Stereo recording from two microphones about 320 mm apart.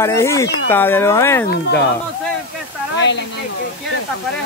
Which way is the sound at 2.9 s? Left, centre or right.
Left.